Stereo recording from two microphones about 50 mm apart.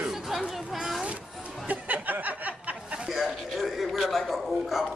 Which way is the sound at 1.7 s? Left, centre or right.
Right.